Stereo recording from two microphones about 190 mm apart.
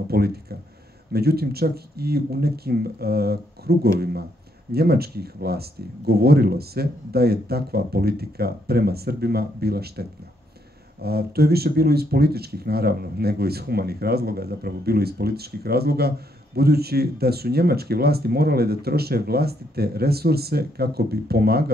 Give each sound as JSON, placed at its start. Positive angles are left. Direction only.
{"t": 0.1, "sound": "speech", "side_deg": -55}